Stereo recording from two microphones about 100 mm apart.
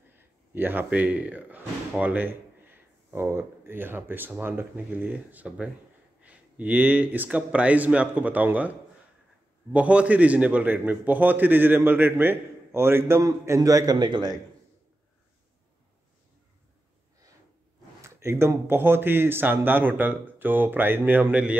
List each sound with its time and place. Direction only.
0.1 s a man's voice: 20° right (ahead or behind)
13.2 s a man's voice: 35° right (ahead or behind)
18.0 s speech: 25° right (ahead or behind)